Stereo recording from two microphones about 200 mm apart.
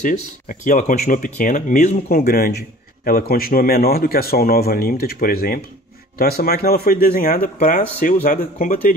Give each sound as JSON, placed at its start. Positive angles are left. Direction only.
{"t": 0.0, "sound": "speech", "side_deg": 40}